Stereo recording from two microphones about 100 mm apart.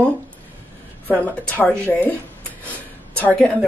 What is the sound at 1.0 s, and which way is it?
Speech, 20° left (ahead or behind).